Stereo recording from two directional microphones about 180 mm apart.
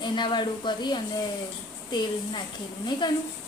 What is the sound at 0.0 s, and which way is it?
Speech, 25° left (ahead or behind).